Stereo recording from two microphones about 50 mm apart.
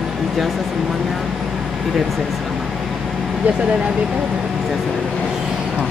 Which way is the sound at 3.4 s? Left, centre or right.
Right.